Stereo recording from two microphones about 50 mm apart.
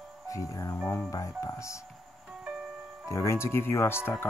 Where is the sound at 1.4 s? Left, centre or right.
Left.